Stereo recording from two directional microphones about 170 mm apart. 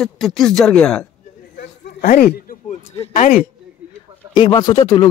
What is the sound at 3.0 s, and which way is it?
Speech, 40° left (ahead or behind).